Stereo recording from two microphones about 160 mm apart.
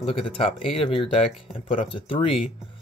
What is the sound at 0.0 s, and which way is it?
Speech, 35° left (ahead or behind).